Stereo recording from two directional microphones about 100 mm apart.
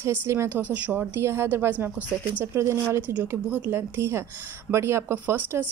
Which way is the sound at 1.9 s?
20° left (ahead or behind).